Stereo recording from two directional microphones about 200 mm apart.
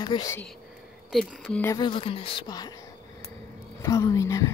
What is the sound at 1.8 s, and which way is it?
Speech, 25° left (ahead or behind).